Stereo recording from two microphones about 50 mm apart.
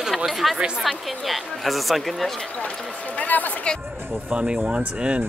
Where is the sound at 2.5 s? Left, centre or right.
Left.